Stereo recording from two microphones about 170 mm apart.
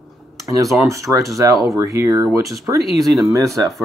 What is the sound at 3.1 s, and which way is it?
Speech, centre (ahead or behind).